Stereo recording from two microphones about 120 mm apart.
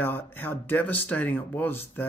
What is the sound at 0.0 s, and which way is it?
Speech, 15° left (ahead or behind).